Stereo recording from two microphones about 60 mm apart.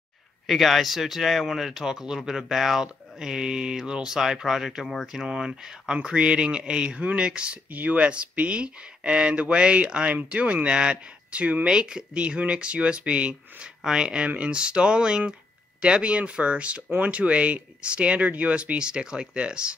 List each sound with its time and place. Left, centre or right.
0.5 s speech: centre